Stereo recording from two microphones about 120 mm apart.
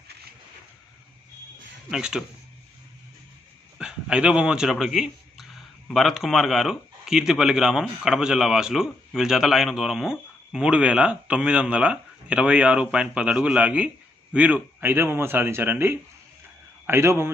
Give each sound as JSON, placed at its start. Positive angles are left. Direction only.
{"t": 1.9, "sound": "a man's voice", "side_deg": -5}
{"t": 3.7, "sound": "a man's voice", "side_deg": -5}